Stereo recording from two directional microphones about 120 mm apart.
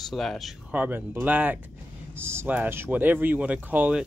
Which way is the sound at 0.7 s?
15° right (ahead or behind).